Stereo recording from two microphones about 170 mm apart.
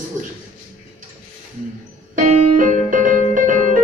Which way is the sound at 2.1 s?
50° right (ahead or behind).